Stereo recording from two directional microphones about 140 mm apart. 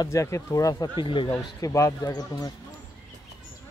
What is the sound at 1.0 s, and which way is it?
Speech, 35° left (ahead or behind).